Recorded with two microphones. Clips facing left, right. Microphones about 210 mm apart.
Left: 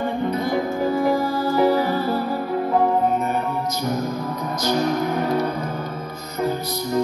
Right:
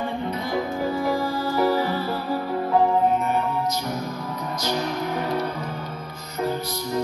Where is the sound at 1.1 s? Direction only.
45° left (ahead or behind).